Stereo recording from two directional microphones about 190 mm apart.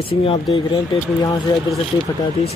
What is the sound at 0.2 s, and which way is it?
Speech, 30° left (ahead or behind).